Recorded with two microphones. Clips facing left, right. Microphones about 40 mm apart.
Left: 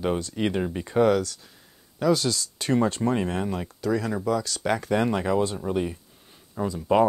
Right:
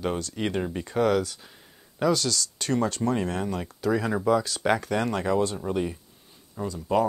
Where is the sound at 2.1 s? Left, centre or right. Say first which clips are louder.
Left 1 dB; centre.